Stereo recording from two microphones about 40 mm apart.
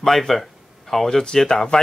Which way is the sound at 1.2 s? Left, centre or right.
Centre.